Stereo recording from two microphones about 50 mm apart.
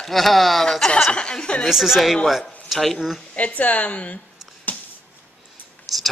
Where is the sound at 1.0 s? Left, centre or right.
Centre.